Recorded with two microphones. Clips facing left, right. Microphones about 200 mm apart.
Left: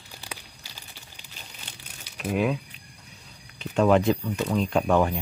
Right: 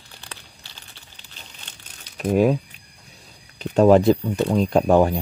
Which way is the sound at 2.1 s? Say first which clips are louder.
Right 7 dB; 40° right (ahead or behind).